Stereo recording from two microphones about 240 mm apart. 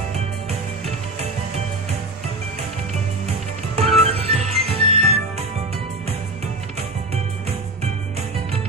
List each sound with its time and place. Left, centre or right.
3.7 s music: right